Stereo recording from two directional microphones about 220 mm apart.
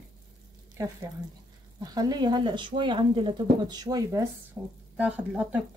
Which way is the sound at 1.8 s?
15° right (ahead or behind).